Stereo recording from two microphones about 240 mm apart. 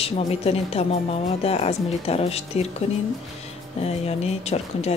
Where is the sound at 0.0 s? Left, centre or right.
Left.